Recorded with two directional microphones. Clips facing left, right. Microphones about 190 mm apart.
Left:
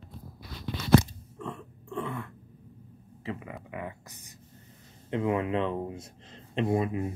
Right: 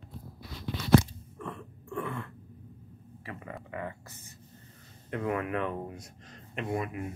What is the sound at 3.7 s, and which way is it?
Speech, 10° left (ahead or behind).